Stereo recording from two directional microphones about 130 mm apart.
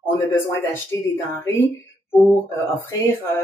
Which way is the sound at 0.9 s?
20° left (ahead or behind).